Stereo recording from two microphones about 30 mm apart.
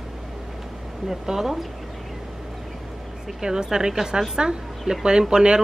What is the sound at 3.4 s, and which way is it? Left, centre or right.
A woman's voice, right.